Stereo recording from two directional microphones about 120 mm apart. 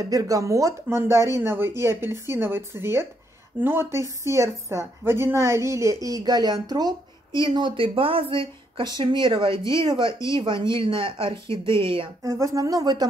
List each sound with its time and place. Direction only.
0.0 s a woman's voice: 30° right (ahead or behind)
10.1 s speech: 25° left (ahead or behind)
10.4 s speech: 40° right (ahead or behind)
12.2 s a woman's voice: 25° right (ahead or behind)